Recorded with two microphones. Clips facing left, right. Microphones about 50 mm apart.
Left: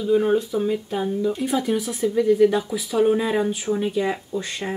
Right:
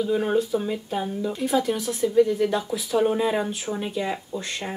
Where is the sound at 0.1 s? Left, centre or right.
Centre.